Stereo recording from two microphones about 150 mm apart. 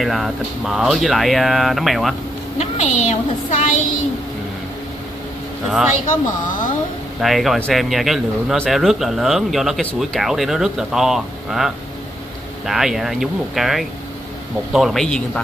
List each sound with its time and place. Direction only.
0.0 s speech: centre (ahead or behind)
2.6 s a woman's voice: 50° left (ahead or behind)
6.0 s speech: 60° left (ahead or behind)
7.2 s speech: centre (ahead or behind)